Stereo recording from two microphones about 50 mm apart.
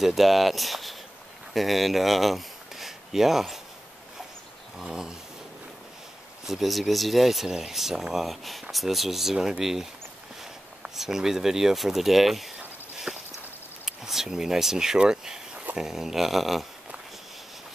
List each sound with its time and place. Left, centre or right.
0.0 s speech: centre
4.7 s speech: centre
6.4 s speech: centre
13.1 s a sound: centre
13.8 s a sound: centre
15.7 s speech: centre